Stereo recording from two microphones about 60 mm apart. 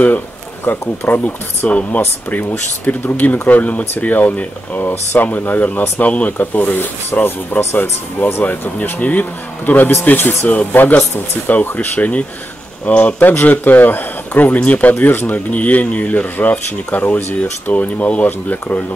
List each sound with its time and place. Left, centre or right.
0.7 s speech: left